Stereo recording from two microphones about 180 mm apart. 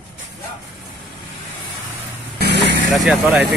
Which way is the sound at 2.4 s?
70° right (ahead or behind).